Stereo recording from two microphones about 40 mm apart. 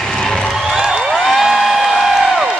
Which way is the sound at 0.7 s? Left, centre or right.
Centre.